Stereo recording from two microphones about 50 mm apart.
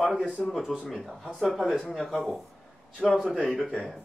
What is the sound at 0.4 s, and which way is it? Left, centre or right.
A man's voice, centre.